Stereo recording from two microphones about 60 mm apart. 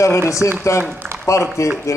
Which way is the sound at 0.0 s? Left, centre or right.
Left.